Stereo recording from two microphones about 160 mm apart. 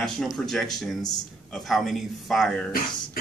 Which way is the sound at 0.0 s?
5° left (ahead or behind).